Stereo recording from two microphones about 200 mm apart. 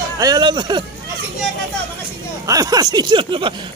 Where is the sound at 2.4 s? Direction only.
15° right (ahead or behind).